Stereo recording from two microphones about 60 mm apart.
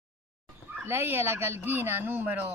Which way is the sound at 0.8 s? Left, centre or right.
Right.